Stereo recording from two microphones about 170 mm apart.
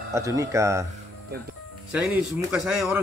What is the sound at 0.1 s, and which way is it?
Speech, 20° right (ahead or behind).